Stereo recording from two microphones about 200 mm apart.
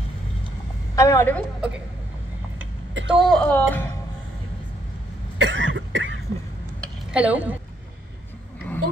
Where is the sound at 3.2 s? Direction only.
5° left (ahead or behind).